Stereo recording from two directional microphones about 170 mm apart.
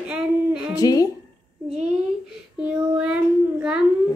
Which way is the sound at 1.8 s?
75° left (ahead or behind).